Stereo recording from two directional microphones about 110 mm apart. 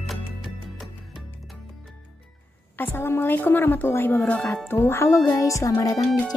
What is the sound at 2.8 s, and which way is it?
A woman's voice, 20° left (ahead or behind).